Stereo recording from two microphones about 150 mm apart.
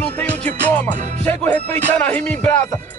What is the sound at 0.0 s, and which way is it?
Music, 10° left (ahead or behind).